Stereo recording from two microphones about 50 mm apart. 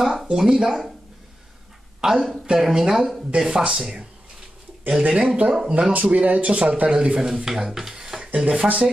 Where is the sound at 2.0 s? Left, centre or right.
Centre.